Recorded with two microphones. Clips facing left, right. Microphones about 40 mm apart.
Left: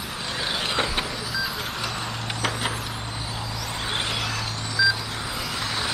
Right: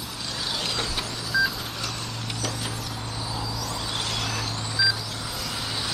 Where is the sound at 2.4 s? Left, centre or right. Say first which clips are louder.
Left 6 dB; left.